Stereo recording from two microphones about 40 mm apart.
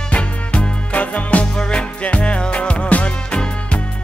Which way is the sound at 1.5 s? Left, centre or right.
Left.